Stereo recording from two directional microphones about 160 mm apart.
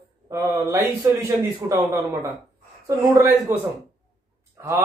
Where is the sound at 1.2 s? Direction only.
20° right (ahead or behind).